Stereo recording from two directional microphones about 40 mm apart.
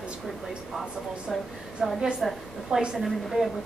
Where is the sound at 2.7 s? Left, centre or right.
Centre.